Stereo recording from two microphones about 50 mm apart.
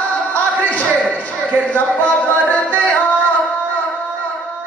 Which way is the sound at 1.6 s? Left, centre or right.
Left.